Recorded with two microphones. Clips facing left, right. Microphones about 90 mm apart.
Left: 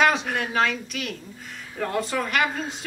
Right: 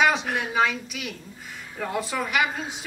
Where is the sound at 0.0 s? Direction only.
Centre (ahead or behind).